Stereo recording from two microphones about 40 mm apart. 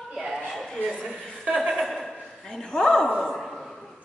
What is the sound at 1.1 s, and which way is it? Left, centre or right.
Chuckle, centre.